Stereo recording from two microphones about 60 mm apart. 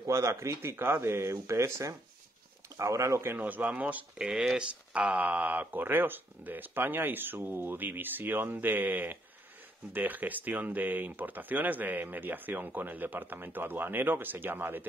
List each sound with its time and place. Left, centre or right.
0.0 s speech: right
3.2 s speech: right
3.4 s speech: right